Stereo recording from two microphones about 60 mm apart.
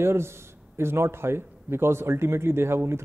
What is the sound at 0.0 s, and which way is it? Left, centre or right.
A man's voice, right.